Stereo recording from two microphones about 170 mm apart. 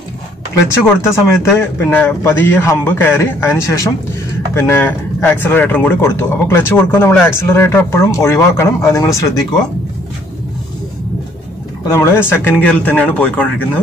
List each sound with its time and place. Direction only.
1.0 s speech: 15° left (ahead or behind)
11.9 s speech: 15° left (ahead or behind)